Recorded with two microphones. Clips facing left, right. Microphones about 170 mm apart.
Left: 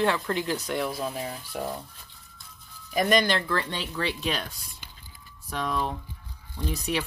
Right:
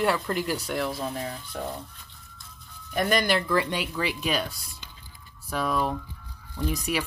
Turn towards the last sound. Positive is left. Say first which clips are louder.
# right 1 dB
turn(degrees=-10)  # may be behind; listen again after turning